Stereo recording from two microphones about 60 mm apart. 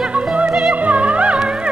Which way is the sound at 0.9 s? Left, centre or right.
Right.